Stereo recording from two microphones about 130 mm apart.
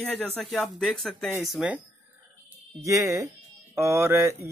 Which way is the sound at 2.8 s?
25° right (ahead or behind).